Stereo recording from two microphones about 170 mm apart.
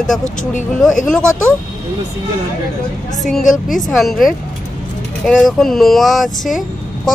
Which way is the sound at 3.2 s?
Centre (ahead or behind).